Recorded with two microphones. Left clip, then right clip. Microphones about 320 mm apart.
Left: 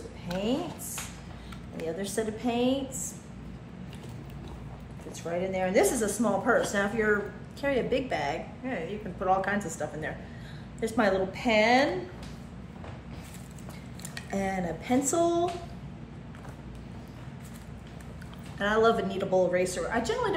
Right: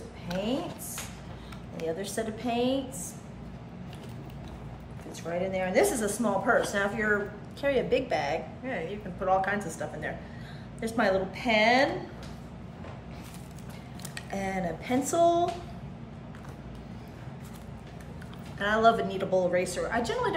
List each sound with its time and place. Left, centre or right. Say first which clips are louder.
0.3 s a woman's voice: left 1 dB; centre
2.0 s a woman's voice: left 2 dB; centre
5.2 s a woman's voice: left 1 dB; centre
14.1 s a woman's voice: left 1 dB; centre
18.6 s a woman's voice: right 1 dB; centre